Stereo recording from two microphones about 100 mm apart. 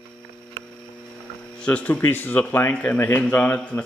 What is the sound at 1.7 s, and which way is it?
Speech, 15° left (ahead or behind).